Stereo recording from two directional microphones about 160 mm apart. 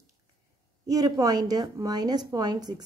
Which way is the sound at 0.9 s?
25° right (ahead or behind).